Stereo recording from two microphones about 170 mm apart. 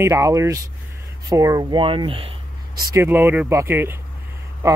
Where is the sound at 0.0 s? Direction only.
20° right (ahead or behind).